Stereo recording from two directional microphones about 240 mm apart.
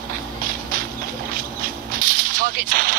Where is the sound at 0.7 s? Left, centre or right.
Right.